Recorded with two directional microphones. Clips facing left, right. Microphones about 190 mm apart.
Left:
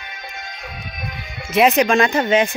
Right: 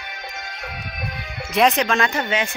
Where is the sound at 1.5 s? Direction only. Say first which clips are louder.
Left 4 dB; 5° left (ahead or behind).